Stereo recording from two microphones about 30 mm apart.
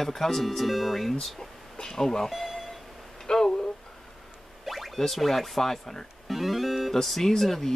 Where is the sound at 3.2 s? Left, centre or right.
Centre.